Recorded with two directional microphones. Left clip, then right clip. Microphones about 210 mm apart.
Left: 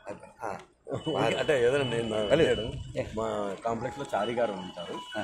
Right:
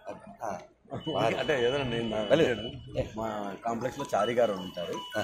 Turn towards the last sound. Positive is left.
turn(degrees=-5)  # may be behind; listen again after turning